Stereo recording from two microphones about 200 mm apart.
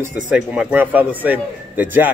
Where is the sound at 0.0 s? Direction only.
5° right (ahead or behind).